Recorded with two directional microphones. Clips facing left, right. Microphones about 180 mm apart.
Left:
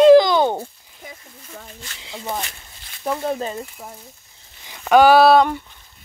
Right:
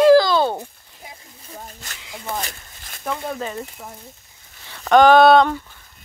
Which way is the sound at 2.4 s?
45° right (ahead or behind).